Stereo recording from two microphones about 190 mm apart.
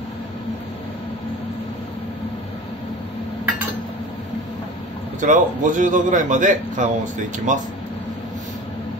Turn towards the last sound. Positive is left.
turn(degrees=-40)  # may be behind; listen again after turning